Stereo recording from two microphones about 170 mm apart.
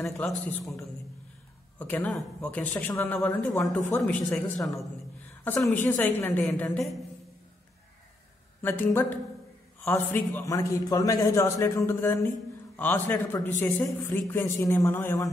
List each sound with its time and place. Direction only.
0.0 s a man's voice: centre (ahead or behind)
1.8 s a man's voice: 10° left (ahead or behind)
5.4 s a man's voice: 15° left (ahead or behind)
8.6 s a man's voice: 10° left (ahead or behind)